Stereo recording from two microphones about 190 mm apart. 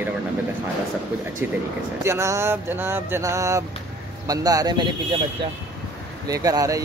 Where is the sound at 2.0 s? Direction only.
15° right (ahead or behind).